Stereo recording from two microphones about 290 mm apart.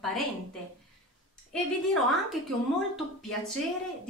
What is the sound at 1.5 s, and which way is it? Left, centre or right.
A woman's voice, centre.